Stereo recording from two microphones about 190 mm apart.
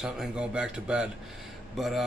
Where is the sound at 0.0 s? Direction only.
5° right (ahead or behind).